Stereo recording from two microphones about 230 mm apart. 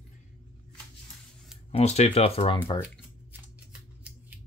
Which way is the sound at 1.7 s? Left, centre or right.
Left.